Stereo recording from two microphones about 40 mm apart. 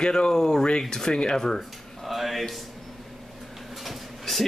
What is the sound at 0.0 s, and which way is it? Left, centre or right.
Speech, centre.